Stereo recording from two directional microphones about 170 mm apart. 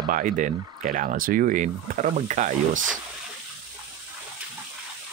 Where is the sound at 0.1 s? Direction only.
50° right (ahead or behind).